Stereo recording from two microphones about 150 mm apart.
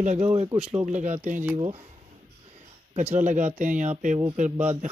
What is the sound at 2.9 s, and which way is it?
Speech, 45° right (ahead or behind).